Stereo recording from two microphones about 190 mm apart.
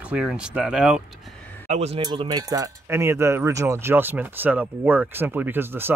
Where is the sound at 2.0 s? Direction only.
20° right (ahead or behind).